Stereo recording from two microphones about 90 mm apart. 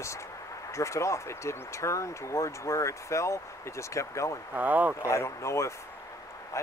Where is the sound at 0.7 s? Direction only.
35° left (ahead or behind).